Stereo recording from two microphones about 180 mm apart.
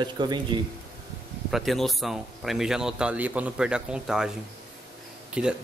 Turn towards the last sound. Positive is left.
turn(degrees=-5)  # may be behind; listen again after turning